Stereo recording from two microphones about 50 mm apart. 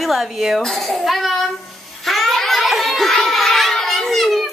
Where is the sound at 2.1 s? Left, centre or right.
Centre.